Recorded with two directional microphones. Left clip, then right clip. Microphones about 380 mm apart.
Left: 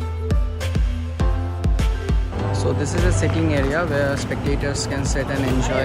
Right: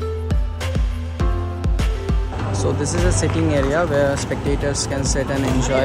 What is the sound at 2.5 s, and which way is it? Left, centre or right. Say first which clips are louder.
Speech: right 1 dB; centre.